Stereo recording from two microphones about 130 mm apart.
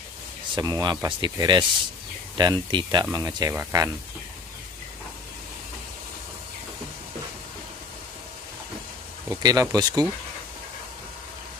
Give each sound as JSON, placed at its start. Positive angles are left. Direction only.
{"t": 0.6, "sound": "speech", "side_deg": -30}
{"t": 9.3, "sound": "speech", "side_deg": -30}